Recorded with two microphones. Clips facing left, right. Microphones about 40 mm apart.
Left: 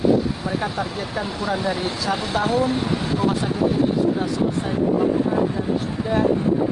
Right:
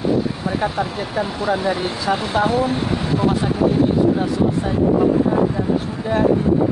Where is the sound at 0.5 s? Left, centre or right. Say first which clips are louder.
Right 3 dB; right.